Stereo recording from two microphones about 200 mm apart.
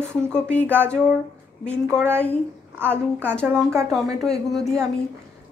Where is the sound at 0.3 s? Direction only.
5° left (ahead or behind).